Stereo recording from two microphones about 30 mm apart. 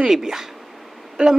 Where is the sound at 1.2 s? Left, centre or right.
Right.